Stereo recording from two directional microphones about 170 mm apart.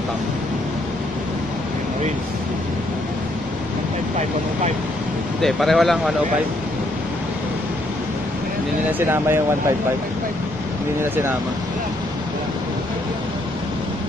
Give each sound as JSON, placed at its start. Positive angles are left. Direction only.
{"t": 5.4, "sound": "speech", "side_deg": 0}
{"t": 9.0, "sound": "speech", "side_deg": -15}